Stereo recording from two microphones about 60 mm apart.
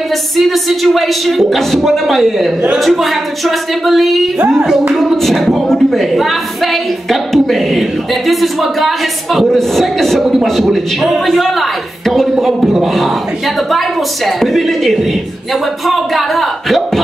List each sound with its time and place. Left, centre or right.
0.4 s a woman's voice: centre